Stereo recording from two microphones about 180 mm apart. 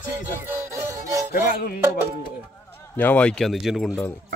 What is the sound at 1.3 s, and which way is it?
Music, 55° left (ahead or behind).